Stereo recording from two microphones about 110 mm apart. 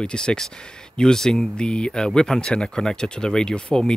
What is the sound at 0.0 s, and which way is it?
Speech, 5° left (ahead or behind).